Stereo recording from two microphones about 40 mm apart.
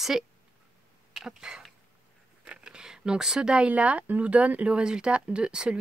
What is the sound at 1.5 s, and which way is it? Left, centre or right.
Speech, centre.